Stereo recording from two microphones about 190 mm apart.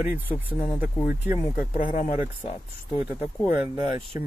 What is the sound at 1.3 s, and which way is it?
Speech, 40° left (ahead or behind).